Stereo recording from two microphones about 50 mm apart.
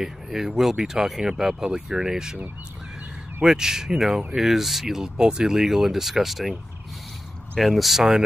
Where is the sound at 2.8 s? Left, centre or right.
Centre.